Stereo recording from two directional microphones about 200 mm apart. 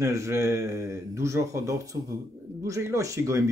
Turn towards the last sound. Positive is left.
turn(degrees=-15)  # may be behind; listen again after turning